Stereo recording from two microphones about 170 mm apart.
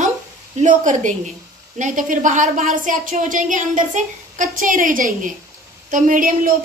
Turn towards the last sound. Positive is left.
turn(degrees=-50)  # may be behind; listen again after turning